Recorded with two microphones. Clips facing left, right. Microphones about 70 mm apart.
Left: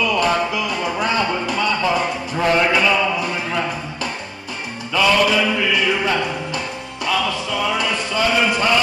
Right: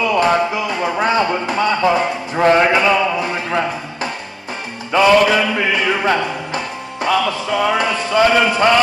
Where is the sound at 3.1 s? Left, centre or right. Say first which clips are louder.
Right 3 dB; right.